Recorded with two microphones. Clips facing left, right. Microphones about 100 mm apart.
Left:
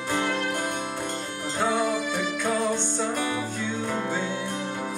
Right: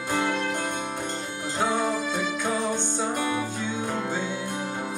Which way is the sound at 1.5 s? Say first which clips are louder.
Left 1 dB; 15° right (ahead or behind).